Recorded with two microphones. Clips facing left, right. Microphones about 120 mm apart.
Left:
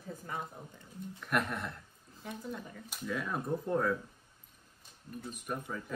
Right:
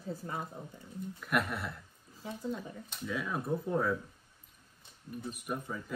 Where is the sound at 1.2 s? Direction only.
5° right (ahead or behind).